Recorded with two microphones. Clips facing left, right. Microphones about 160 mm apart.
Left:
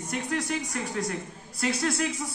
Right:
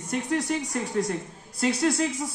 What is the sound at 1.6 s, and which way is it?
Speech, 25° right (ahead or behind).